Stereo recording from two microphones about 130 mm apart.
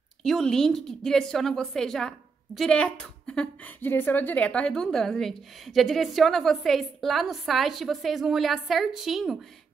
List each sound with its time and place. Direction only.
0.2 s a woman's voice: 5° left (ahead or behind)